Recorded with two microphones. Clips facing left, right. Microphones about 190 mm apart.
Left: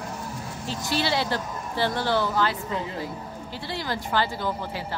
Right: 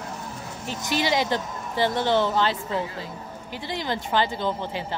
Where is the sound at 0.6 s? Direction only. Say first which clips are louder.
Right 2 dB; 15° right (ahead or behind).